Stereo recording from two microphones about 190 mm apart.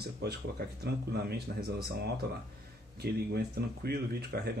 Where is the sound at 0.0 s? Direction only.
55° right (ahead or behind).